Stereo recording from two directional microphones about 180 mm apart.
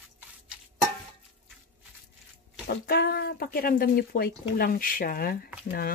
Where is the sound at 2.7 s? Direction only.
60° left (ahead or behind).